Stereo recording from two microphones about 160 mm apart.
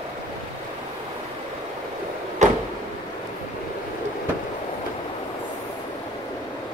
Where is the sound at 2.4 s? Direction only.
50° right (ahead or behind).